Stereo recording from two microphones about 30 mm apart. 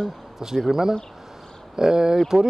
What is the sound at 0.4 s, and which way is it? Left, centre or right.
Speech, centre.